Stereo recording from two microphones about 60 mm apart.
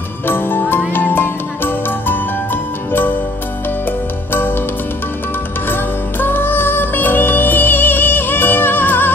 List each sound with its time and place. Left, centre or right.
0.3 s music: left
4.3 s music: left
5.7 s music: left